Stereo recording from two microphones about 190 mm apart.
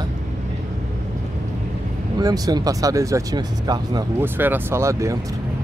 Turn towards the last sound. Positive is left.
turn(degrees=-15)  # may be behind; listen again after turning